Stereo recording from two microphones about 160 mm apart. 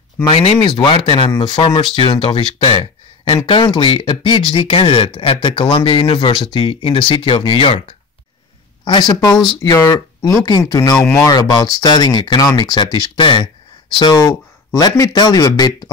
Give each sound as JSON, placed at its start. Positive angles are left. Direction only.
{"t": 0.2, "sound": "speech", "side_deg": 35}
{"t": 8.8, "sound": "speech", "side_deg": 25}
{"t": 11.0, "sound": "speech", "side_deg": 10}
{"t": 11.2, "sound": "speech", "side_deg": 25}